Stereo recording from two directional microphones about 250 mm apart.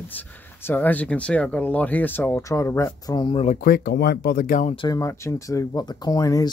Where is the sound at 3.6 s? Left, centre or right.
Left.